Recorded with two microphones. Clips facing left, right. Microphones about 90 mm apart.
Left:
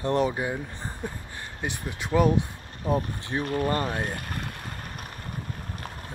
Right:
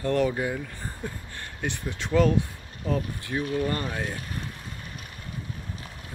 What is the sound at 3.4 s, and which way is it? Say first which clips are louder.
Speech: left 2 dB; 45° left (ahead or behind).